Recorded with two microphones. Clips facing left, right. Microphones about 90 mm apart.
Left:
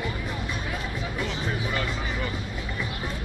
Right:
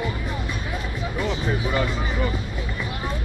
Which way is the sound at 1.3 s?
20° right (ahead or behind).